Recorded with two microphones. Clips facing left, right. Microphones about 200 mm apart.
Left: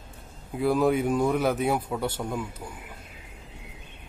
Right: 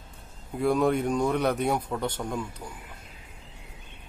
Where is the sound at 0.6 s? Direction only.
Centre (ahead or behind).